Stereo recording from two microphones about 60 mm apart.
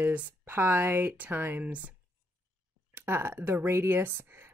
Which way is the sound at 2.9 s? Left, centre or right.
Right.